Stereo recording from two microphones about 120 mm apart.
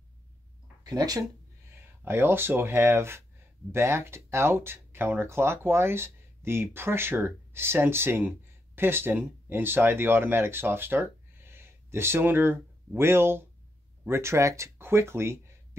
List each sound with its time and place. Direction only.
0.8 s speech: 30° right (ahead or behind)
2.0 s speech: 20° right (ahead or behind)